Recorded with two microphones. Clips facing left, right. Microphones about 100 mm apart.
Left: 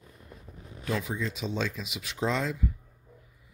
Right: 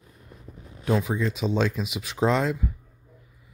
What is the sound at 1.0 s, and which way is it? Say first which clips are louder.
Speech: right 7 dB; 60° right (ahead or behind).